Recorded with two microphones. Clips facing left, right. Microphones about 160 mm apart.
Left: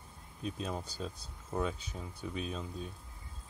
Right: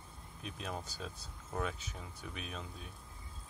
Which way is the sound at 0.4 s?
30° left (ahead or behind).